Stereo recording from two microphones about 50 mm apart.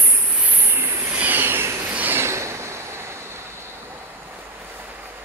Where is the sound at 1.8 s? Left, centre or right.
Right.